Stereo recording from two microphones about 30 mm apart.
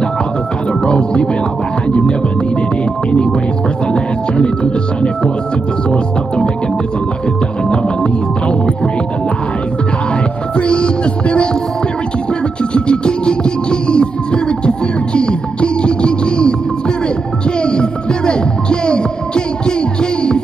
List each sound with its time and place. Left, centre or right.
0.8 s speech: left
5.9 s speech: left
7.7 s music: left
10.6 s music: left
12.7 s music: left
17.6 s music: left